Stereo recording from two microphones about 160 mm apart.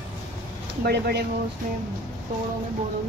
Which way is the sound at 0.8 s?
90° right.